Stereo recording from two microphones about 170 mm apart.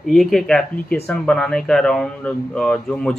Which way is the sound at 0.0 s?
Centre (ahead or behind).